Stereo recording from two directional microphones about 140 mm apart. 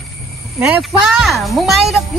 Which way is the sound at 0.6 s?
Centre (ahead or behind).